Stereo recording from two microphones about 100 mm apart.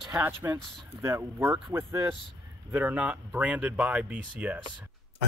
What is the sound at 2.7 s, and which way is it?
Speech, 15° right (ahead or behind).